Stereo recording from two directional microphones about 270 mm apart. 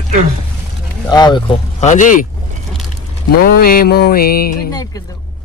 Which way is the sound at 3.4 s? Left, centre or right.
Left.